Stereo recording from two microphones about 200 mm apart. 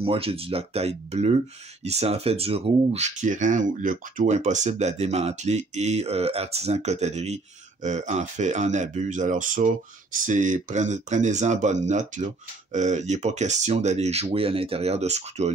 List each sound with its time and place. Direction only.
0.0 s speech: 30° right (ahead or behind)